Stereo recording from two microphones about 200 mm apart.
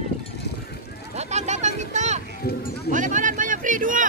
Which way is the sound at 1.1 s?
35° right (ahead or behind).